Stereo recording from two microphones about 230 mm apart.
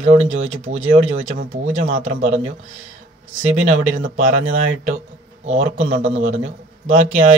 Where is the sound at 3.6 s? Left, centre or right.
Right.